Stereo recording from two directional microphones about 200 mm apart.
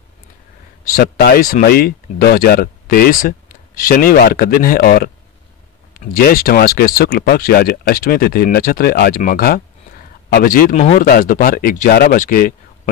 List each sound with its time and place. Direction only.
0.8 s speech: 45° left (ahead or behind)